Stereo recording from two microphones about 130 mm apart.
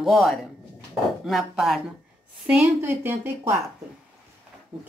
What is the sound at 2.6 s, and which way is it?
Speech, 15° right (ahead or behind).